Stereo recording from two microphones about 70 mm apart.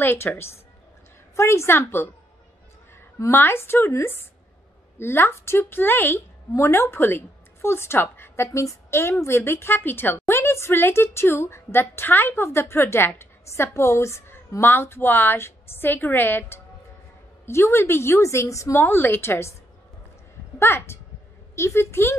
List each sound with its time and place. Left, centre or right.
0.0 s a woman's voice: left
3.3 s a woman's voice: left
18.8 s a woman's voice: left
20.5 s a woman's voice: left